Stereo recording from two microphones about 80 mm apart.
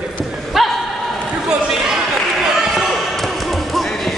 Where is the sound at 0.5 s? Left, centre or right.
Centre.